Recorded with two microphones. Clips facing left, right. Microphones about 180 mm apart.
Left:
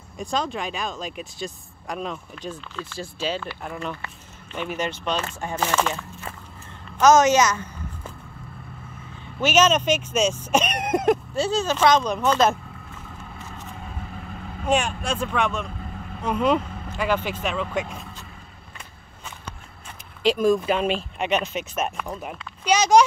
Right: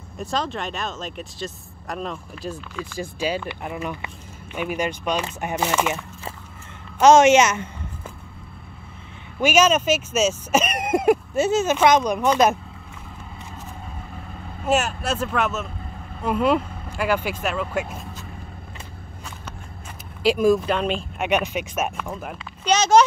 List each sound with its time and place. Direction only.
0.2 s speech: centre (ahead or behind)
7.0 s a woman's voice: 25° right (ahead or behind)
9.4 s speech: 10° right (ahead or behind)
11.3 s speech: 20° right (ahead or behind)
14.6 s speech: 5° right (ahead or behind)
20.2 s speech: 5° right (ahead or behind)
20.6 s speech: 5° left (ahead or behind)
21.2 s speech: 10° right (ahead or behind)
22.7 s a child's voice: 10° left (ahead or behind)